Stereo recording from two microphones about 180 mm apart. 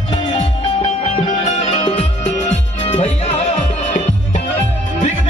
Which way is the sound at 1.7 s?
30° left (ahead or behind).